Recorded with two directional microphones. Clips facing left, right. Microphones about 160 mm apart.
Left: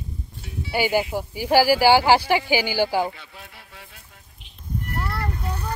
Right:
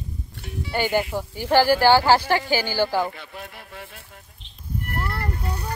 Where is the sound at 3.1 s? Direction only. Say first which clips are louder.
Right 6 dB; 60° right (ahead or behind).